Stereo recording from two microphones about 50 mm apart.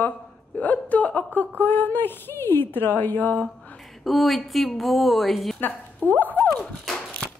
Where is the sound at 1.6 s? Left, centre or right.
Left.